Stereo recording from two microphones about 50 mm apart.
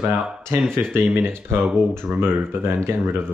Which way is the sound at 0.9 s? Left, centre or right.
Right.